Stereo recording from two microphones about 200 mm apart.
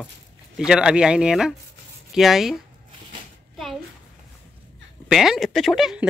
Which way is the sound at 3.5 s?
Centre (ahead or behind).